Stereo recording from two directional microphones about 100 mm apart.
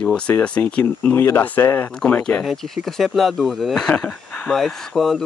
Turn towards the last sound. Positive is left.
turn(degrees=0)  # may be behind; listen again after turning